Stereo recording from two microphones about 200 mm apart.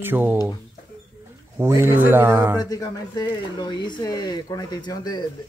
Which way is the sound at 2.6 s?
20° left (ahead or behind).